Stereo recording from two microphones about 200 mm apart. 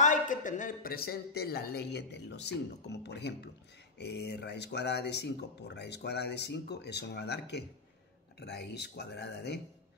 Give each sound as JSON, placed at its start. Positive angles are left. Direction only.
{"t": 0.0, "sound": "speech", "side_deg": 40}